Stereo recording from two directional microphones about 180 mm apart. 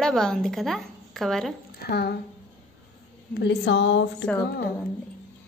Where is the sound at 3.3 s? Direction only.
70° left (ahead or behind).